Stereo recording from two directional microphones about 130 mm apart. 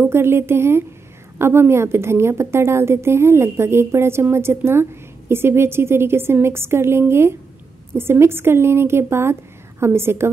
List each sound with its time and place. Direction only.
0.0 s a woman's voice: 20° right (ahead or behind)